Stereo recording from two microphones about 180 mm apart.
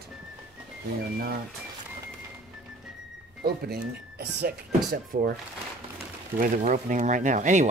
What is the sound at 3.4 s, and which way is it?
Speech, 65° right (ahead or behind).